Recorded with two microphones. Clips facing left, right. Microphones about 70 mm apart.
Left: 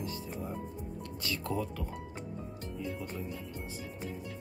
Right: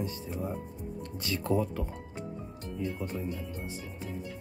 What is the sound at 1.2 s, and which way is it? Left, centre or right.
Speech, right.